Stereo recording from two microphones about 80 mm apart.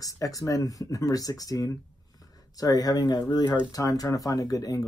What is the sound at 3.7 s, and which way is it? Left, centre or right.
Speech, left.